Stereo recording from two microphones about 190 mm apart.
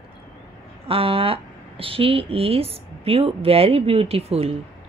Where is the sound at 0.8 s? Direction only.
30° right (ahead or behind).